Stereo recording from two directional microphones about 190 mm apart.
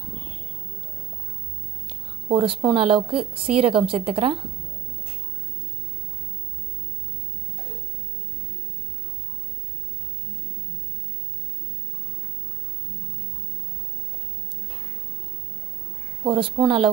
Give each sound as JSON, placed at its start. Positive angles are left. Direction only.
{"t": 2.2, "sound": "a woman's voice", "side_deg": -25}
{"t": 16.3, "sound": "a woman's voice", "side_deg": -25}